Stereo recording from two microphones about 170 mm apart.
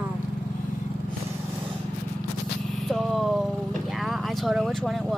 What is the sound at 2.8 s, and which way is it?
Vehicle, centre (ahead or behind).